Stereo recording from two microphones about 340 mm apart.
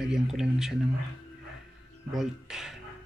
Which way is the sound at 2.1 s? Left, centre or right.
Centre.